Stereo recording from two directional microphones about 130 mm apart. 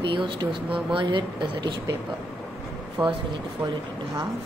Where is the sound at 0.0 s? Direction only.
40° right (ahead or behind).